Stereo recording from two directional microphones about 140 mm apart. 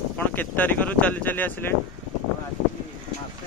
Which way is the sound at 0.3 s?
10° left (ahead or behind).